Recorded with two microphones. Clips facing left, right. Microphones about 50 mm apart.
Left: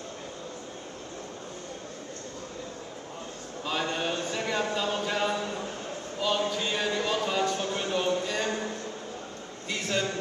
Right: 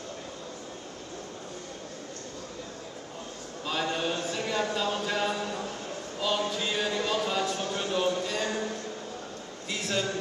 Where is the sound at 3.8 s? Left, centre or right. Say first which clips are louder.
Right 1 dB; left.